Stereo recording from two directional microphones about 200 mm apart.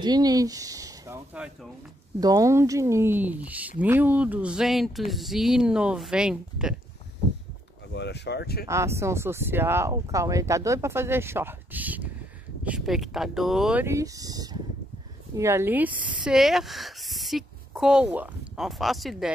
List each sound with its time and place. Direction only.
0.0 s speech: 20° right (ahead or behind)
2.1 s speech: 20° right (ahead or behind)
7.9 s speech: 60° left (ahead or behind)
8.6 s speech: 15° right (ahead or behind)